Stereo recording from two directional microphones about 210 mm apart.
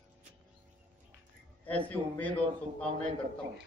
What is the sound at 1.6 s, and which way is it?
Speech, 5° left (ahead or behind).